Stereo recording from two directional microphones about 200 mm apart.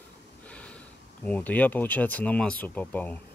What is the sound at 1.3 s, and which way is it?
Speech, 10° left (ahead or behind).